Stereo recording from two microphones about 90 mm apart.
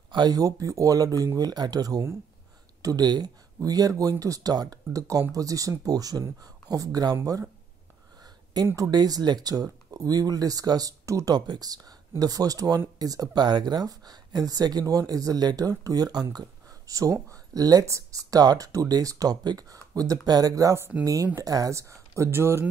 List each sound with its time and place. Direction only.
0.1 s speech: 45° right (ahead or behind)
8.7 s speech: 45° right (ahead or behind)
11.3 s speech: 50° right (ahead or behind); by 22.7 s 30° right (ahead or behind)